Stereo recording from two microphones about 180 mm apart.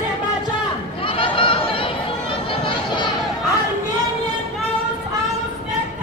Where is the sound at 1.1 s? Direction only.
30° left (ahead or behind).